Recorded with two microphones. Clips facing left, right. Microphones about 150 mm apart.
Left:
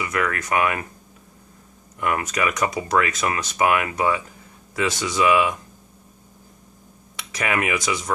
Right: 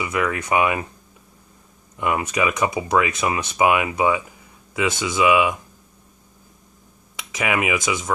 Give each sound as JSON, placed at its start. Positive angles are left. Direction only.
{"t": 0.0, "sound": "speech", "side_deg": -15}
{"t": 2.0, "sound": "speech", "side_deg": -15}
{"t": 7.3, "sound": "speech", "side_deg": -10}